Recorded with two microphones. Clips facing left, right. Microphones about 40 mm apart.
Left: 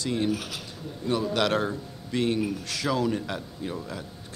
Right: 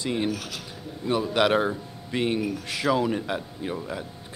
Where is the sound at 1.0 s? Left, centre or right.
Centre.